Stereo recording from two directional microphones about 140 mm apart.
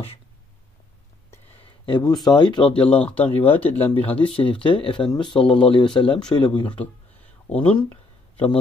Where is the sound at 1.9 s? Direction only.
30° left (ahead or behind).